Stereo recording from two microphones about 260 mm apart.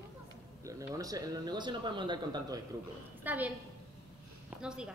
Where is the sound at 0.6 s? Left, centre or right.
Centre.